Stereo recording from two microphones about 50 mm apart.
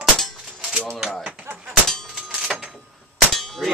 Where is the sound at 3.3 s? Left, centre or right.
Centre.